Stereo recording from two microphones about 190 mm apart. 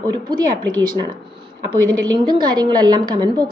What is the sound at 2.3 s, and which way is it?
Speech, 20° right (ahead or behind).